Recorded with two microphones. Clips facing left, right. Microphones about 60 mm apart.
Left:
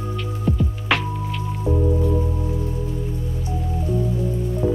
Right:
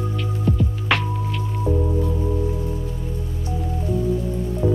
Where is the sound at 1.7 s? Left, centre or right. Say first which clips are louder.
Even; left.